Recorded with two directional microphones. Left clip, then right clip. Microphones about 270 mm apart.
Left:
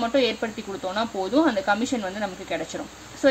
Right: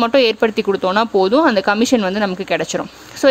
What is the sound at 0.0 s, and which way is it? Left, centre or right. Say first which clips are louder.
Speech: right 10 dB; right.